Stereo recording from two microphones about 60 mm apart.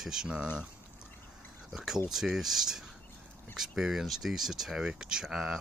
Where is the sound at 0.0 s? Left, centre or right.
Centre.